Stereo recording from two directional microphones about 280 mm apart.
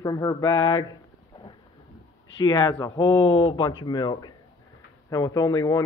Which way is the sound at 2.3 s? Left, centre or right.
Centre.